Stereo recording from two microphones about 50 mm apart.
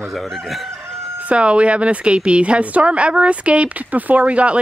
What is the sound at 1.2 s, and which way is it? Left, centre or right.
Speech, right.